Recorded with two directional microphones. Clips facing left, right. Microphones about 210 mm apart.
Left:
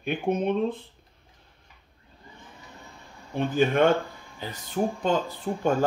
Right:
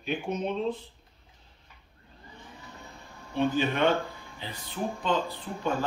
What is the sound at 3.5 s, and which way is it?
Speech, 50° left (ahead or behind).